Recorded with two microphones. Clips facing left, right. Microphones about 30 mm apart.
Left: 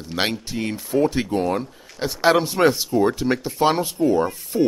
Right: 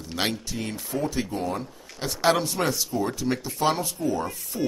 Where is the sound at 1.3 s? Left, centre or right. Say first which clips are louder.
Left 7 dB; left.